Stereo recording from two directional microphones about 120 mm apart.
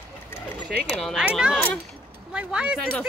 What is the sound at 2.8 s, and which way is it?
Speech, 10° left (ahead or behind).